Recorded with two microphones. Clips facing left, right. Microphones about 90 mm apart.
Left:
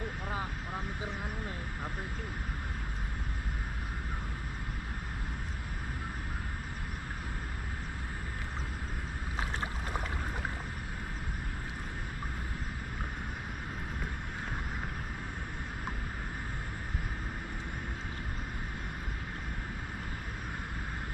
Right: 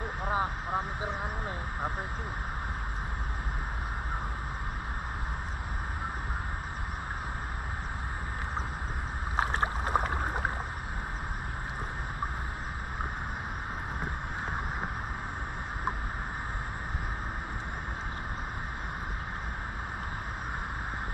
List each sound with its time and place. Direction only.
0.2 s vehicle: 30° right (ahead or behind)
9.4 s boat: 45° right (ahead or behind)